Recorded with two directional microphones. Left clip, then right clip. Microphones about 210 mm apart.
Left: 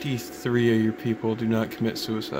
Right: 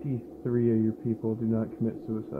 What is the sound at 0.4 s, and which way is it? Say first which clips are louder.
A man's voice: left 4 dB; 30° left (ahead or behind).